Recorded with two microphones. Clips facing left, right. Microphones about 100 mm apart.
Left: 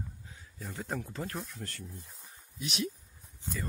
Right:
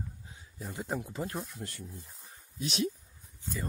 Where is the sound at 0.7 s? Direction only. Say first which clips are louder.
Right 2 dB; 15° right (ahead or behind).